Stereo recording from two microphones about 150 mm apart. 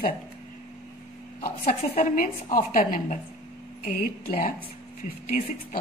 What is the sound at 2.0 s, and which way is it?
A woman's voice, 65° left (ahead or behind).